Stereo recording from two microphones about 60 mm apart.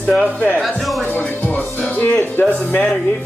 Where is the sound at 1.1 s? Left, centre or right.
Left.